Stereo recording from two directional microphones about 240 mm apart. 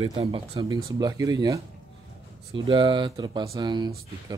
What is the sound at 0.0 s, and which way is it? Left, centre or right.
Speech, right.